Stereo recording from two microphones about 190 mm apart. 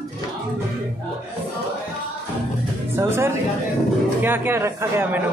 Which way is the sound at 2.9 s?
15° right (ahead or behind).